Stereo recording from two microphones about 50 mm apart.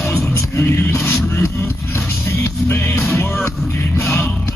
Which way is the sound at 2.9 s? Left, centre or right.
Left.